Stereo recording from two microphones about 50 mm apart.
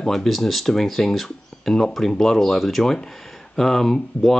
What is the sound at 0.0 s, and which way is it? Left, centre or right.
Speech, centre.